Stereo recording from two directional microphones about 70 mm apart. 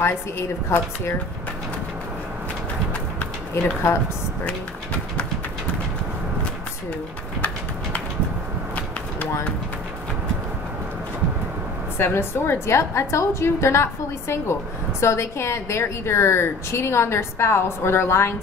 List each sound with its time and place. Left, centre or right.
0.0 s a woman's voice: left
3.6 s speech: left
12.0 s a woman's voice: left